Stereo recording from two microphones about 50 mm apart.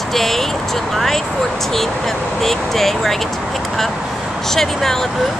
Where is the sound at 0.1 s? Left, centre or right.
Centre.